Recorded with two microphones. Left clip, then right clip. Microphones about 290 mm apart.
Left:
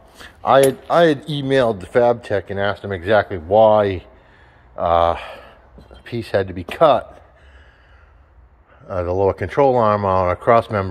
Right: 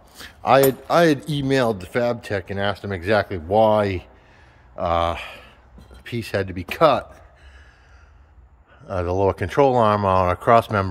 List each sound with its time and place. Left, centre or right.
0.1 s speech: centre
8.8 s speech: centre